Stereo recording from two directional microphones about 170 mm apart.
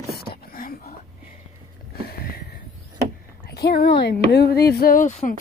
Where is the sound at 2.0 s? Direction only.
65° left (ahead or behind).